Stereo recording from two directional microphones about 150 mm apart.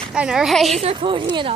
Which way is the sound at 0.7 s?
40° right (ahead or behind).